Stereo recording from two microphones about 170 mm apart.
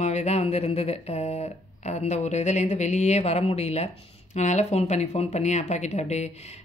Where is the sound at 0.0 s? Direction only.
40° left (ahead or behind).